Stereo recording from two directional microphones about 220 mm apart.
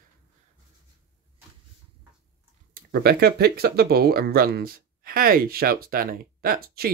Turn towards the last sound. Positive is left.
turn(degrees=-45)  # may be behind; listen again after turning